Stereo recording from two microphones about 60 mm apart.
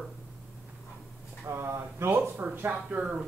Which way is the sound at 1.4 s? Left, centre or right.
Right.